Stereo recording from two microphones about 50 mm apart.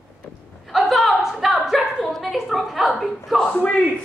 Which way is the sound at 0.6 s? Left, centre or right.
Centre.